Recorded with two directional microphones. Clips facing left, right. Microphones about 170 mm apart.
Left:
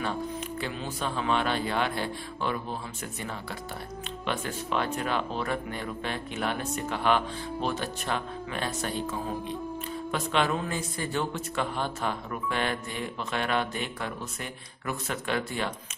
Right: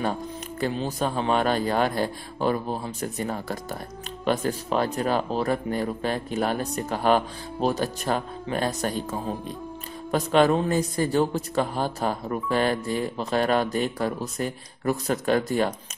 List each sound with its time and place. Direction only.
0.0 s a man's voice: 40° right (ahead or behind)